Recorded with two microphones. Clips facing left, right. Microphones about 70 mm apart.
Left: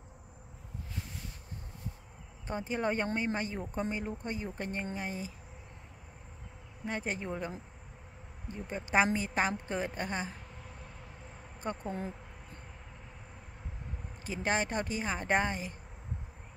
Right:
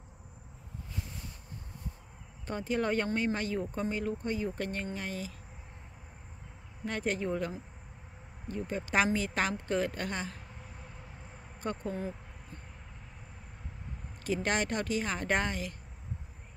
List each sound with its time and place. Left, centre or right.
2.4 s a woman's voice: centre
6.8 s a woman's voice: centre
11.6 s a woman's voice: centre
14.2 s speech: centre